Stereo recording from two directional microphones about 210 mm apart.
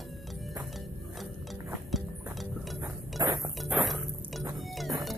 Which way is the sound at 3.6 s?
Centre (ahead or behind).